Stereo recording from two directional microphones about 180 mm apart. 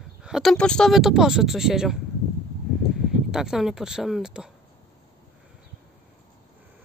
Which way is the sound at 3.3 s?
5° right (ahead or behind).